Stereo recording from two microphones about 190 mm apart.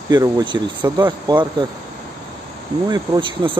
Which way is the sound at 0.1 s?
20° right (ahead or behind).